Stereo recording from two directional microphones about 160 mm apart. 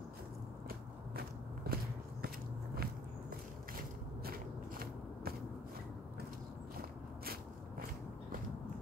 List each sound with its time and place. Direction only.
0.7 s walk: 70° right (ahead or behind)
2.2 s biting: 70° right (ahead or behind)
4.2 s a sound: 70° right (ahead or behind)